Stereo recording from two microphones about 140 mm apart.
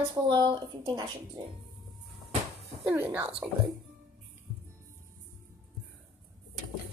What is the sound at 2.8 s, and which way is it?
Speech, 15° right (ahead or behind).